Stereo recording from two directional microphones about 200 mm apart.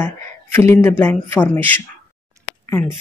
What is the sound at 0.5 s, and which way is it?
Speech, 15° left (ahead or behind).